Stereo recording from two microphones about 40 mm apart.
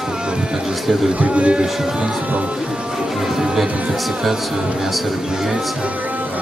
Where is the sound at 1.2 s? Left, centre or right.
Right.